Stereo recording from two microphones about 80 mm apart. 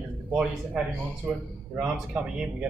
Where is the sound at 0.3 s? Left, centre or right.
Centre.